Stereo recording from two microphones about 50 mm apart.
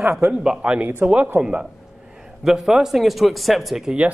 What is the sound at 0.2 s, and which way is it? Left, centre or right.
A man's voice, centre.